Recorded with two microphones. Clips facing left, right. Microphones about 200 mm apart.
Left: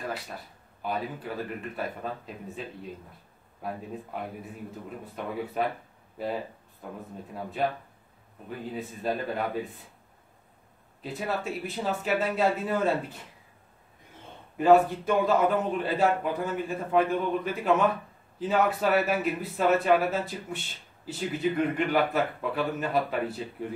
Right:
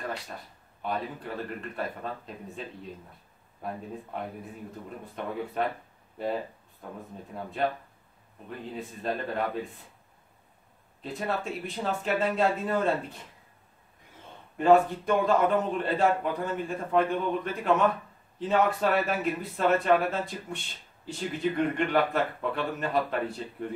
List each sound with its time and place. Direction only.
0.8 s speech: 5° left (ahead or behind)
11.0 s speech: 5° left (ahead or behind)
14.6 s speech: 5° left (ahead or behind)